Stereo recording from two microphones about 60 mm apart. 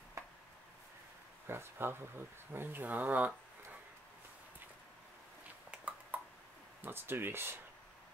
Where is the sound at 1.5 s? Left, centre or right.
Right.